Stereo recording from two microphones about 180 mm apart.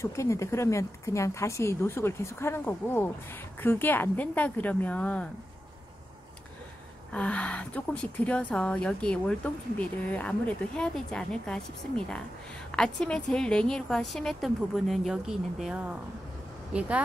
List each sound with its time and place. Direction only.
0.0 s a woman's voice: 15° left (ahead or behind)
7.1 s a woman's voice: 5° left (ahead or behind)
12.7 s a woman's voice: 5° left (ahead or behind)